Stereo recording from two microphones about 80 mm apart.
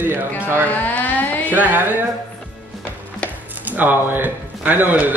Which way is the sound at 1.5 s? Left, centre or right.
Right.